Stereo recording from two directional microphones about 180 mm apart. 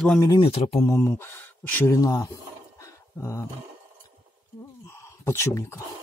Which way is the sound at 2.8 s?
15° left (ahead or behind).